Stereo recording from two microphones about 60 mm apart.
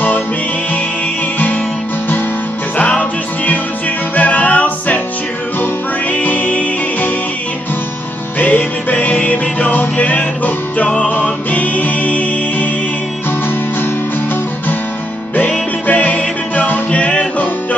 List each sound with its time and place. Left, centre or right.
2.8 s music: left
6.1 s music: left
8.4 s music: left
15.9 s music: left